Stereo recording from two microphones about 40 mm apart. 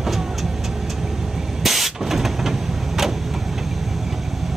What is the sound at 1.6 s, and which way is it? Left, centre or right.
Vehicle, centre.